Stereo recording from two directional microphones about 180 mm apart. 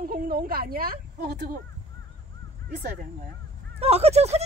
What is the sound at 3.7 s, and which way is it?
Speech, 35° right (ahead or behind).